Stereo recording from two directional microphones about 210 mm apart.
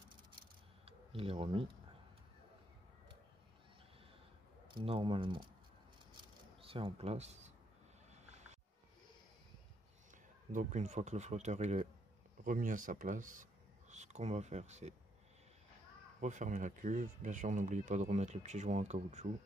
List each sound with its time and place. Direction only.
0.8 s speech: 25° right (ahead or behind)
4.6 s speech: 25° right (ahead or behind)
6.6 s speech: 25° right (ahead or behind)
10.1 s speech: 35° right (ahead or behind)
16.2 s speech: 35° right (ahead or behind)